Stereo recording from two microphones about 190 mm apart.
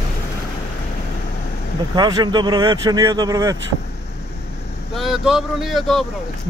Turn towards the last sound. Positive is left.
turn(degrees=0)  # may be behind; listen again after turning